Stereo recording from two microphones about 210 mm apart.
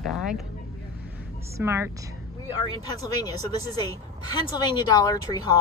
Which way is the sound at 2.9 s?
20° left (ahead or behind).